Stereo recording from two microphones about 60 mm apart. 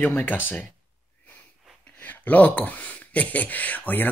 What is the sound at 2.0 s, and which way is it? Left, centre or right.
Speech, left.